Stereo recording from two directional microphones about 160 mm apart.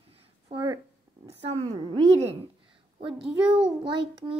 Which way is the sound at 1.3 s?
40° right (ahead or behind).